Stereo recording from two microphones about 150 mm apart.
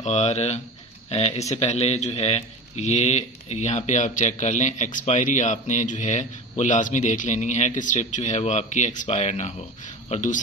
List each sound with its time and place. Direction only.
0.0 s a man's voice: 50° left (ahead or behind)